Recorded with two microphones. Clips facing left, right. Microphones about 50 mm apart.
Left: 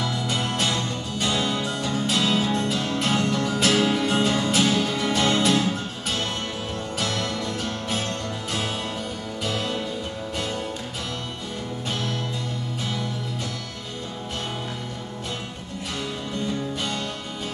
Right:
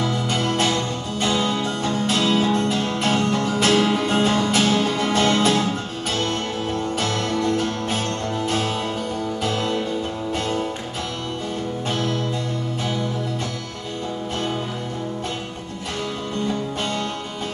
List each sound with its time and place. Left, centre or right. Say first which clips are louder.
0.0 s music: right 4 dB; right
7.0 s music: right 2 dB; right
9.4 s music: right 2 dB; right
11.9 s music: right 5 dB; right